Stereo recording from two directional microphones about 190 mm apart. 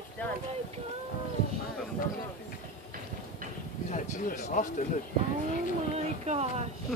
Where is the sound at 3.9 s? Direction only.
40° left (ahead or behind).